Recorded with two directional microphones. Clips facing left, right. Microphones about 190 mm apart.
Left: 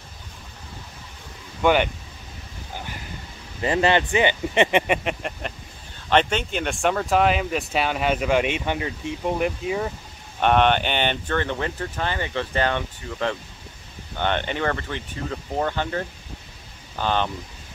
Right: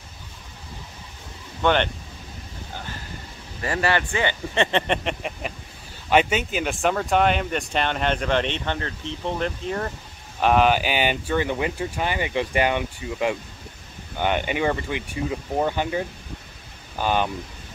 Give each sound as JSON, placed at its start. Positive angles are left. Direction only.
{"t": 1.6, "sound": "speech", "side_deg": 10}
{"t": 3.6, "sound": "speech", "side_deg": 20}